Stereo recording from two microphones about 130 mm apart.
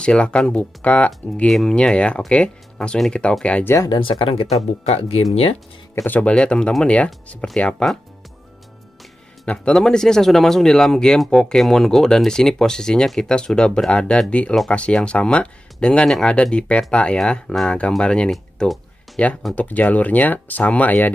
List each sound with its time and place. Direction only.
0.0 s speech: 10° left (ahead or behind)
3.7 s speech: 25° left (ahead or behind)
4.0 s speech: 45° left (ahead or behind)
6.0 s speech: 10° left (ahead or behind)
9.5 s speech: 5° left (ahead or behind)